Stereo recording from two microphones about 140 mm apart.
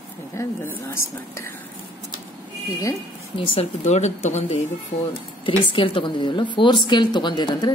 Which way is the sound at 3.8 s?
55° left (ahead or behind).